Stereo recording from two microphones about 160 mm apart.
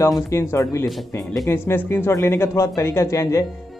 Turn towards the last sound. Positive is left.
turn(degrees=20)  # may be behind; listen again after turning